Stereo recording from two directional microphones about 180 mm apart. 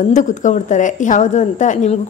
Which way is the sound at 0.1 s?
45° left (ahead or behind).